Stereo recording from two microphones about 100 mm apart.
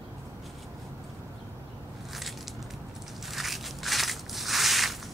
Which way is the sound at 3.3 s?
Centre (ahead or behind).